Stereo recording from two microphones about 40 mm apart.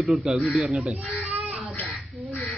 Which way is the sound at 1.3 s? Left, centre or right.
Right.